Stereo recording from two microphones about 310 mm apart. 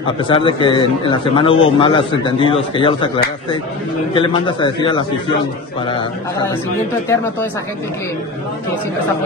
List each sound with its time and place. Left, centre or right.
0.0 s a man's voice: centre